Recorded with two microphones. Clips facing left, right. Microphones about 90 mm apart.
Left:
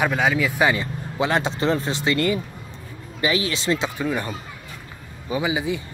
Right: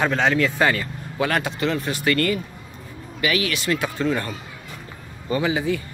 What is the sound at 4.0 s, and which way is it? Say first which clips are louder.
Speech: right 2 dB; 15° left (ahead or behind).